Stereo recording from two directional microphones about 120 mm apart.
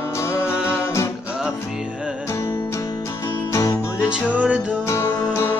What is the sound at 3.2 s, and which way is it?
Music, 25° left (ahead or behind).